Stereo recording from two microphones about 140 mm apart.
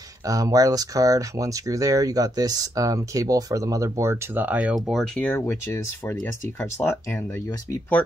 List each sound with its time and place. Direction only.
0.3 s speech: 25° right (ahead or behind); by 7.2 s 15° left (ahead or behind)